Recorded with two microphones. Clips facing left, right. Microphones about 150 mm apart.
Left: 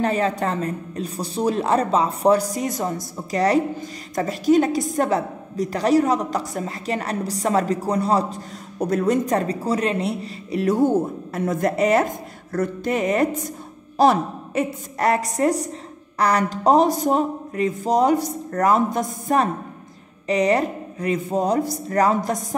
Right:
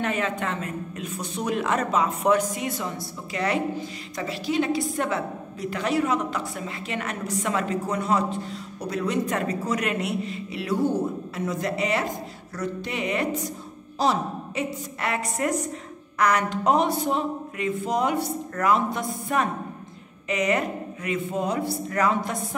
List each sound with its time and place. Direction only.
0.0 s a woman's voice: 35° left (ahead or behind)
8.7 s a woman's voice: 45° left (ahead or behind)